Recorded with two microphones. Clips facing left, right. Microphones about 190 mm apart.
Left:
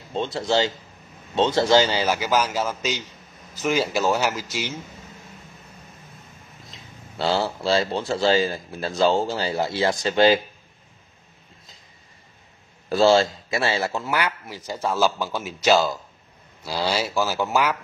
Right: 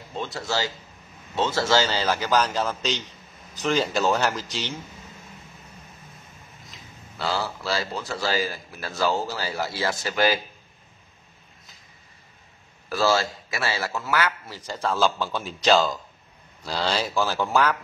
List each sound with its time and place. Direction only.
0.1 s a man's voice: 25° left (ahead or behind)
7.2 s a man's voice: 30° left (ahead or behind)
12.9 s a man's voice: 25° left (ahead or behind)